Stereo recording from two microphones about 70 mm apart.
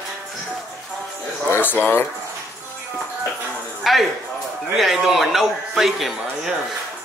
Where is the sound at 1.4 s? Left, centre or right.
Left.